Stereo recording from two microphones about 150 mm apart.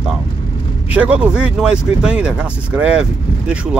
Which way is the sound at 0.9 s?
10° right (ahead or behind).